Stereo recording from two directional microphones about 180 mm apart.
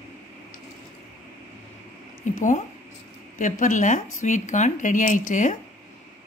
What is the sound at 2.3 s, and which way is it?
A woman's voice, 45° left (ahead or behind).